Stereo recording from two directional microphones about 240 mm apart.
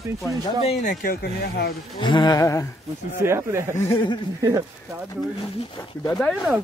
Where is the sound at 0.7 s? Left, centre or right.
Left.